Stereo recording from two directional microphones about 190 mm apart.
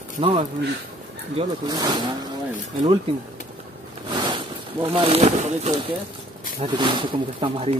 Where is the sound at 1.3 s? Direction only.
20° right (ahead or behind); by 5.9 s 35° right (ahead or behind).